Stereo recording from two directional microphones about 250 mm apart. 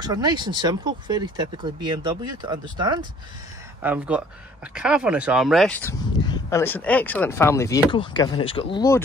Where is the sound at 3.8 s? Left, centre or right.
Centre.